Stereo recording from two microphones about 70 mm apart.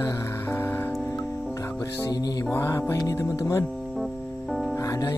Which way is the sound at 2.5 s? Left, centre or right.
Left.